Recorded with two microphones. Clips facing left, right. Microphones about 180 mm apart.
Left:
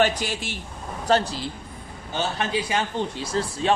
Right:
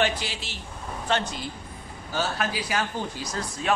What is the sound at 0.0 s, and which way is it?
Speech, 45° left (ahead or behind).